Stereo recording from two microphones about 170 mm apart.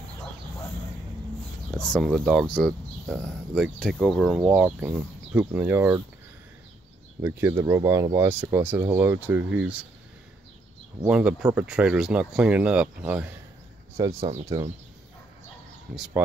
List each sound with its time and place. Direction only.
1.7 s speech: 5° left (ahead or behind)
7.2 s speech: 15° right (ahead or behind)
11.1 s speech: 5° right (ahead or behind)
13.9 s speech: 20° right (ahead or behind)